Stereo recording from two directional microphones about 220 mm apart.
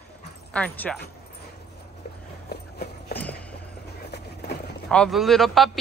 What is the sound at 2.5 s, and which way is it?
Clip-clop, 45° left (ahead or behind).